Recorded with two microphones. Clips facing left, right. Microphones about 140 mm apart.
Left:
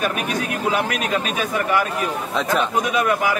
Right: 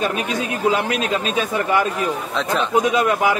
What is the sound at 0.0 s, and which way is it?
Speech, 25° right (ahead or behind).